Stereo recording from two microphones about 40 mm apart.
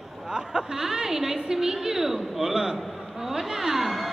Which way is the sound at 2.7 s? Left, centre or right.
Centre.